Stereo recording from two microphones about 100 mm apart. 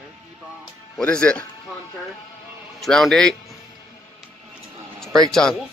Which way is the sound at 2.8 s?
5° left (ahead or behind).